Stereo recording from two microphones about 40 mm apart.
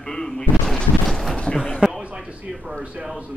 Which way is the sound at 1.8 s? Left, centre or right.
Right.